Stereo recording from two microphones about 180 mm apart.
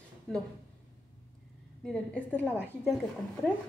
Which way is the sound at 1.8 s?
5° left (ahead or behind).